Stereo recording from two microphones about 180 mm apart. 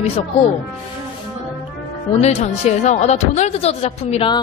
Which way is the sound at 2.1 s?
40° left (ahead or behind).